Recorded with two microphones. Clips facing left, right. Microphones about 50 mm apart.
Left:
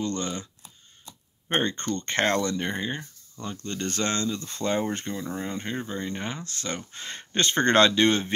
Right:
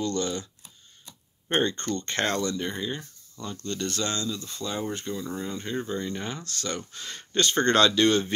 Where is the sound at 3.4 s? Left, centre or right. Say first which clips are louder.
Even; left.